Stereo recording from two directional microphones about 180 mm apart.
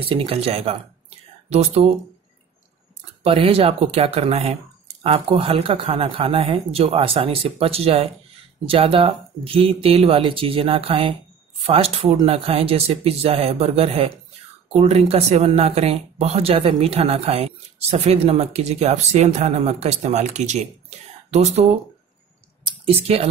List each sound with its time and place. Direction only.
0.1 s speech: 30° right (ahead or behind)
3.3 s speech: 30° right (ahead or behind)
22.7 s speech: 35° right (ahead or behind)